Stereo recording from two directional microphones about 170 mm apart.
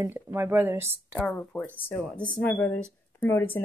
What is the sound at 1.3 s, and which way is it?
A woman's voice, 10° left (ahead or behind).